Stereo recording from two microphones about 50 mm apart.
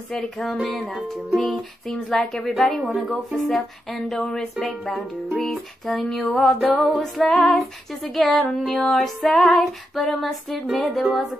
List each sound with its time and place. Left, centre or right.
0.1 s music: centre
2.0 s a woman's voice: centre
2.5 s music: centre